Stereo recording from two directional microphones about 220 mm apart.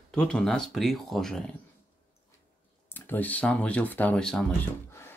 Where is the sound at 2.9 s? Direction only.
10° left (ahead or behind).